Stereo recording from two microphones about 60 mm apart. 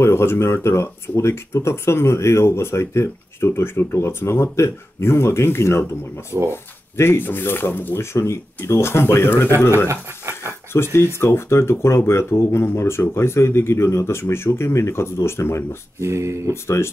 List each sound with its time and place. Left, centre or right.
0.0 s speech: left
8.0 s speech: left
9.8 s a sound: right
10.7 s speech: left
16.0 s speech: right
16.6 s speech: left